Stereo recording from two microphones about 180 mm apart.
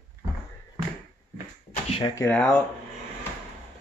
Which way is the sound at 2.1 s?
10° left (ahead or behind).